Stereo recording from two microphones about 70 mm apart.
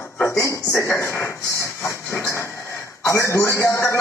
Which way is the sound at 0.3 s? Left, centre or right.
Left.